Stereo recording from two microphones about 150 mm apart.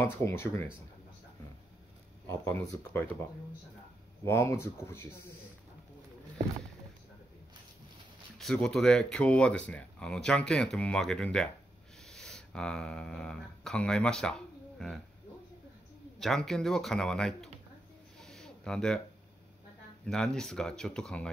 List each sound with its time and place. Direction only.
0.0 s speech: 15° left (ahead or behind)
2.2 s speech: 20° left (ahead or behind)
8.4 s speech: 5° left (ahead or behind)
16.2 s speech: 5° left (ahead or behind)
18.2 s a sound: 5° left (ahead or behind)
20.1 s speech: 5° left (ahead or behind)